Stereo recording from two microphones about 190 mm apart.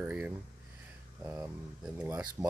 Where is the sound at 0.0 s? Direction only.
10° right (ahead or behind).